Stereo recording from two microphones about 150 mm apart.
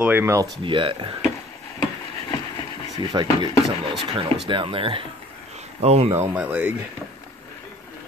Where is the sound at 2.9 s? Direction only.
30° right (ahead or behind).